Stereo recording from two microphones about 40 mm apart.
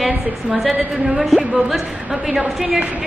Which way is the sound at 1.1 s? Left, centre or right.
Centre.